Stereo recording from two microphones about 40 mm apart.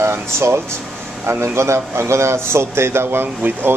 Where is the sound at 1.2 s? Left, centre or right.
Right.